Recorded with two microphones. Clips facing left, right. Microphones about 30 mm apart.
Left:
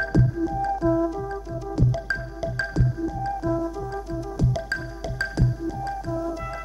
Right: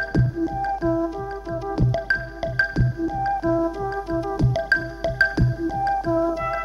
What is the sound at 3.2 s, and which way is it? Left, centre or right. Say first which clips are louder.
Organ: right 6 dB; right.